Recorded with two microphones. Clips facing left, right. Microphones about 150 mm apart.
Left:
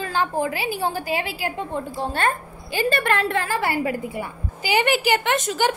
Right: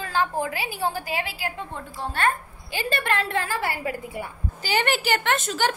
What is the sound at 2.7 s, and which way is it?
A woman's voice, 50° left (ahead or behind).